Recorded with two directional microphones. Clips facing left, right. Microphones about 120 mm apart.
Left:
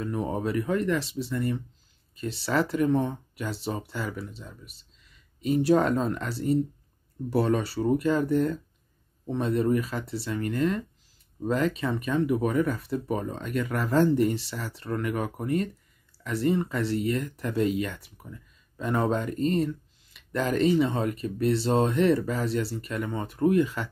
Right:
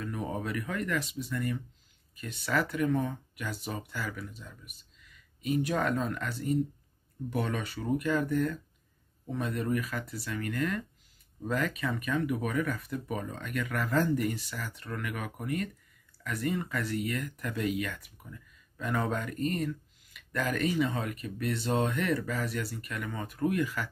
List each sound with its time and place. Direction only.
0.0 s speech: 30° left (ahead or behind)